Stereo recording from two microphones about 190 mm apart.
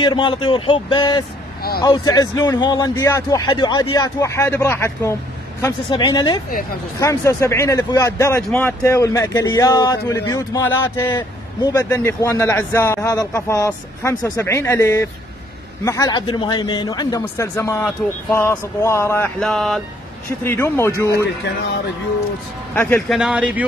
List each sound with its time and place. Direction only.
0.0 s a man's voice: 25° left (ahead or behind)
19.4 s speech: centre (ahead or behind)
20.2 s speech: 15° left (ahead or behind)
22.8 s speech: 10° left (ahead or behind)
23.1 s speech: 5° right (ahead or behind)